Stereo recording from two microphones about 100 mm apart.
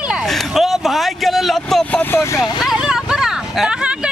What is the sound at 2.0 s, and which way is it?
Speech, 20° left (ahead or behind).